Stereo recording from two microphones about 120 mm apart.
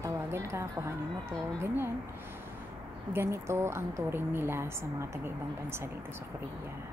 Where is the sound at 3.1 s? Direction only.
20° right (ahead or behind).